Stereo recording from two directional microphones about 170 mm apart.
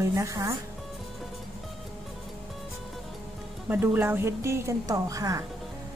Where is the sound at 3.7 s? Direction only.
10° right (ahead or behind).